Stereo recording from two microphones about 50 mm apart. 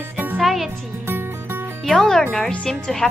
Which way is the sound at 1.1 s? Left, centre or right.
Right.